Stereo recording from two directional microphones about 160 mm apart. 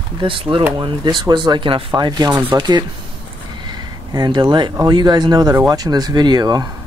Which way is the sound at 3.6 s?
25° right (ahead or behind).